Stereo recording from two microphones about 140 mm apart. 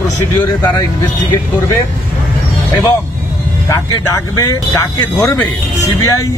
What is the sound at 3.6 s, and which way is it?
Speech, 20° left (ahead or behind).